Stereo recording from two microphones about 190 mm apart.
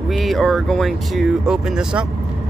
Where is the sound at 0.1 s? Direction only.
Centre (ahead or behind).